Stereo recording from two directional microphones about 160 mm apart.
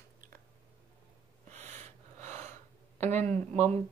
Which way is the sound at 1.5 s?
45° right (ahead or behind).